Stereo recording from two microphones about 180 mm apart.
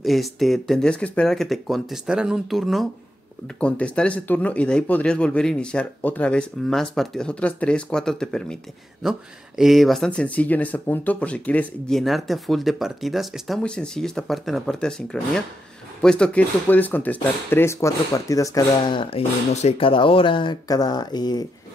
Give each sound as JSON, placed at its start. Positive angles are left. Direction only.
{"t": 0.0, "sound": "speech", "side_deg": 0}